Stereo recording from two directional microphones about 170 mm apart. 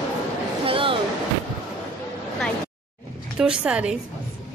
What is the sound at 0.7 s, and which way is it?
Basketball bounce, 30° right (ahead or behind).